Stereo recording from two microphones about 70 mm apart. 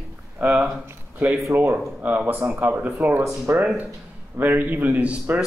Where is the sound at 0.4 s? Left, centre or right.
Right.